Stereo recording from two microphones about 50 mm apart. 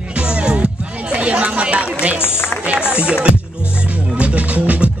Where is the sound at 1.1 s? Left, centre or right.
Right.